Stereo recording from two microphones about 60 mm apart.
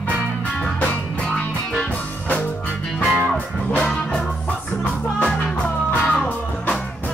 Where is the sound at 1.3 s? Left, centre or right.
Centre.